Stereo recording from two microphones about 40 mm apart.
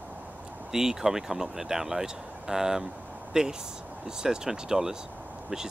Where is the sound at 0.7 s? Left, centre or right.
Centre.